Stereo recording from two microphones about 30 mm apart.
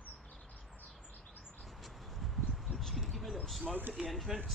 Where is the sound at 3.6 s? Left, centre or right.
Right.